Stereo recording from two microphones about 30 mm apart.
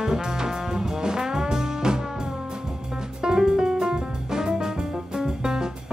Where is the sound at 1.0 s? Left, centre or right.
Right.